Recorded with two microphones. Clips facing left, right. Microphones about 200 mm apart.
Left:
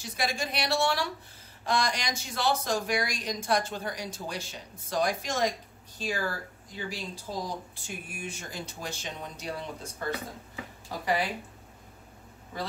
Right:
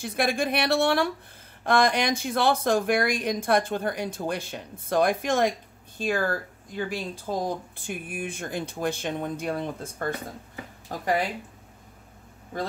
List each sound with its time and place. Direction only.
0.0 s speech: 55° right (ahead or behind)